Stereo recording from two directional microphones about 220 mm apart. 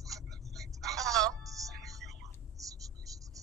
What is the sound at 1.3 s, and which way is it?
Music, 15° right (ahead or behind).